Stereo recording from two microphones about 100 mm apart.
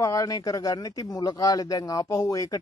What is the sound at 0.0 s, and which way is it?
Speech, 35° left (ahead or behind).